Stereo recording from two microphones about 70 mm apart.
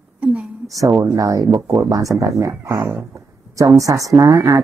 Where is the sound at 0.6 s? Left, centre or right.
Right.